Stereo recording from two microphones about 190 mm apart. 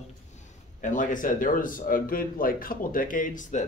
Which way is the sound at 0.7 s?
40° left (ahead or behind).